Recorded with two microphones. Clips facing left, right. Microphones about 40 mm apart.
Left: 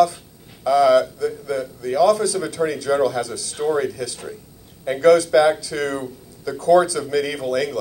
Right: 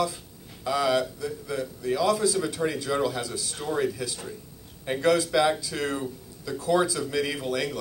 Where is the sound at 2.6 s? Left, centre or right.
Left.